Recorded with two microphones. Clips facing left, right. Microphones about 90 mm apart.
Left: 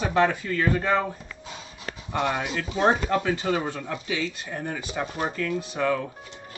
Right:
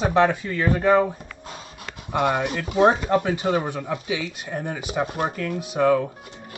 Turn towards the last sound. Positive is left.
turn(degrees=-15)  # may be behind; listen again after turning